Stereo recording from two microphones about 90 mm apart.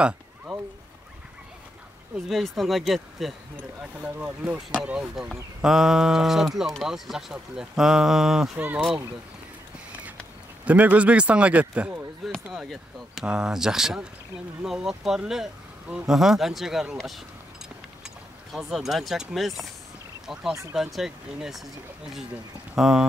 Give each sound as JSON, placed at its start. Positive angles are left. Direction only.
{"t": 0.5, "sound": "a sound", "side_deg": 5}
{"t": 2.2, "sound": "speech", "side_deg": 0}
{"t": 3.5, "sound": "speech", "side_deg": -15}
{"t": 5.1, "sound": "speech", "side_deg": -5}
{"t": 8.5, "sound": "speech", "side_deg": -20}
{"t": 10.6, "sound": "speech", "side_deg": -15}
{"t": 12.4, "sound": "speech", "side_deg": -5}
{"t": 20.7, "sound": "speech", "side_deg": -5}
{"t": 22.8, "sound": "speech", "side_deg": -5}